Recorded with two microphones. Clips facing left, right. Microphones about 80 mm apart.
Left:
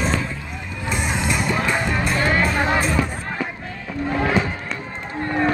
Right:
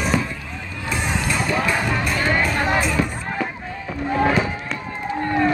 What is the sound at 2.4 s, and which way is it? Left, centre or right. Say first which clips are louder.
Music: left 1 dB; centre.